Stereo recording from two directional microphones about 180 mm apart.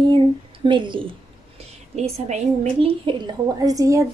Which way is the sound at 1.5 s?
35° right (ahead or behind).